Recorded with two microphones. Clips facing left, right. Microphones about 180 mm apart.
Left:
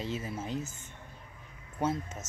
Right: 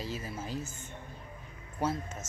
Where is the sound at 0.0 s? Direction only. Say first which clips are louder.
Left 2 dB; 25° left (ahead or behind).